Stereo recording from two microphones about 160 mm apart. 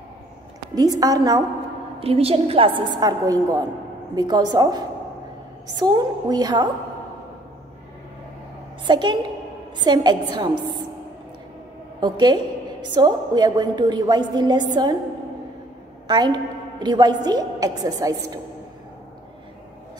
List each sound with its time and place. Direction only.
0.7 s a woman's voice: 20° right (ahead or behind)
2.0 s a woman's voice: 40° right (ahead or behind)
8.8 s a woman's voice: 30° right (ahead or behind)
12.0 s a woman's voice: 25° right (ahead or behind)
16.1 s a woman's voice: 25° right (ahead or behind)